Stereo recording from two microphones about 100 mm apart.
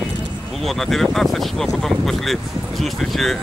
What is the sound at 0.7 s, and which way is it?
Speech, centre (ahead or behind).